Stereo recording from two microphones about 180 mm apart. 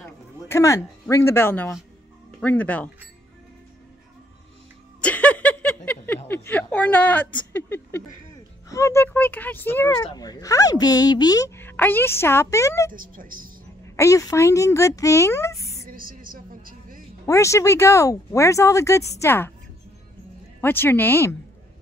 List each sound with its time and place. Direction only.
0.5 s speech: 15° left (ahead or behind)
5.0 s a sound: 10° left (ahead or behind)
8.6 s speech: 15° left (ahead or behind)
12.9 s a woman's voice: 50° right (ahead or behind)
13.9 s speech: 15° left (ahead or behind)
15.9 s a sound: 50° right (ahead or behind)
17.3 s speech: 15° left (ahead or behind)
20.6 s speech: 10° left (ahead or behind)